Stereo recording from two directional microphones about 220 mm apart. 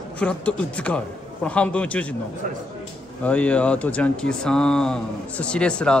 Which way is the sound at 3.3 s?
5° left (ahead or behind).